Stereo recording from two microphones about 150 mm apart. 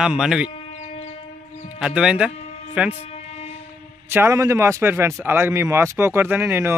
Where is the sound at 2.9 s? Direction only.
45° left (ahead or behind).